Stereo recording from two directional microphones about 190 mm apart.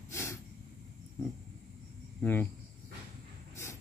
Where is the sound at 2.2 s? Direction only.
10° left (ahead or behind).